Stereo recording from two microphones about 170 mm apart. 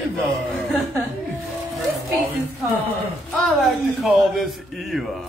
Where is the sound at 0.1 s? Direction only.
Centre (ahead or behind).